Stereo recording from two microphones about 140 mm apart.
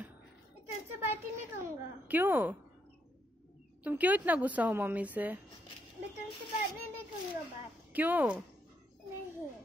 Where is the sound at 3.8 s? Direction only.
10° right (ahead or behind).